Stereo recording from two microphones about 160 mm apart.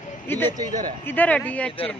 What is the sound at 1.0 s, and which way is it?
Speech, 10° left (ahead or behind).